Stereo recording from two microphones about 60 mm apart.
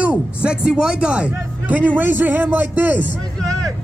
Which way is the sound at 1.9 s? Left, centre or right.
Right.